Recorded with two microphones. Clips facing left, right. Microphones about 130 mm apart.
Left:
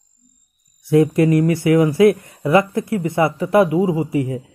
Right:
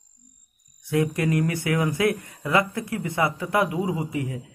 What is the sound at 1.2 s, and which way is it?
Speech, 30° left (ahead or behind).